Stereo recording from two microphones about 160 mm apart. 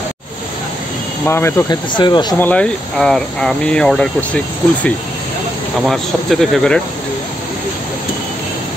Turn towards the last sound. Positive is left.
turn(degrees=0)  # may be behind; listen again after turning